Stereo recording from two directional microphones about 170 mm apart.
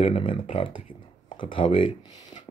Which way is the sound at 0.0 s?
30° left (ahead or behind).